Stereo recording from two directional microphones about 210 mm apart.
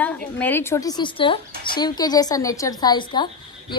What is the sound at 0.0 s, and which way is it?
A woman's voice, 5° left (ahead or behind).